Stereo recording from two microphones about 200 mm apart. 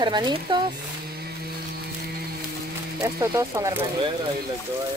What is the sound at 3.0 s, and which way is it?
Speech, 15° right (ahead or behind).